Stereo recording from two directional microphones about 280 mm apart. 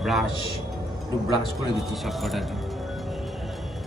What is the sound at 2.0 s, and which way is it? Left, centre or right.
Speech, centre.